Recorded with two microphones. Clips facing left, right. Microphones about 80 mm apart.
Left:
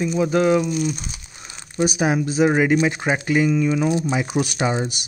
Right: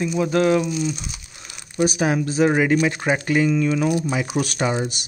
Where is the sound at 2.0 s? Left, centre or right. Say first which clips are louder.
Left 2 dB; centre.